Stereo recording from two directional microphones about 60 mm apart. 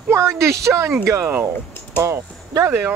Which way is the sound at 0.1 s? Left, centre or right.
Right.